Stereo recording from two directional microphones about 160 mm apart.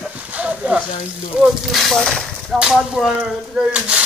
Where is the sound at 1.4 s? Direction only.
Centre (ahead or behind).